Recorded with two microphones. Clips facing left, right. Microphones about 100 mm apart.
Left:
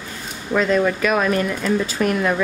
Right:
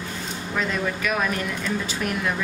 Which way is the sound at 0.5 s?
90° left.